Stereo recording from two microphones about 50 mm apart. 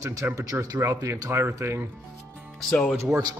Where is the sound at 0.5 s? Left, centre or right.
Right.